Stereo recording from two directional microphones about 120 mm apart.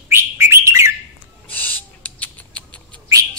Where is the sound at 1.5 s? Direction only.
15° left (ahead or behind).